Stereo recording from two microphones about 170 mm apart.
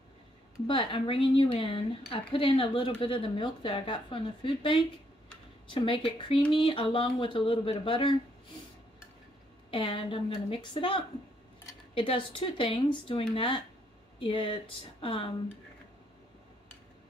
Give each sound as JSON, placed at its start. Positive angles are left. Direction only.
{"t": 0.7, "sound": "speech", "side_deg": 30}
{"t": 9.7, "sound": "a woman's voice", "side_deg": 30}